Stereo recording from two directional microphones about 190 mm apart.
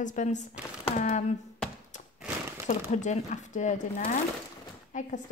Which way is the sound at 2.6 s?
40° left (ahead or behind).